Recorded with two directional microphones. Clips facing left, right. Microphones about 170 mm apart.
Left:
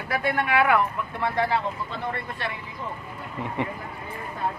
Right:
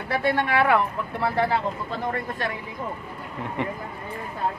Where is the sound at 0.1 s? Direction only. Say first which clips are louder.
Right 1 dB; 30° right (ahead or behind).